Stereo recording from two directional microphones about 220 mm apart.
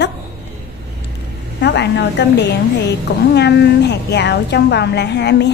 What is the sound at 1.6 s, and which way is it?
A woman's voice, 50° left (ahead or behind).